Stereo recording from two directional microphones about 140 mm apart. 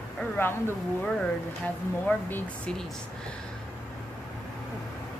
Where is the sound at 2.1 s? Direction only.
15° left (ahead or behind).